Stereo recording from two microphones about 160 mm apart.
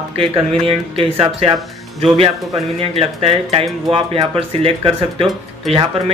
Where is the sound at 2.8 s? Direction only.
35° right (ahead or behind).